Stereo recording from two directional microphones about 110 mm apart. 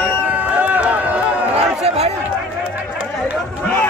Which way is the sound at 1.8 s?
75° right (ahead or behind).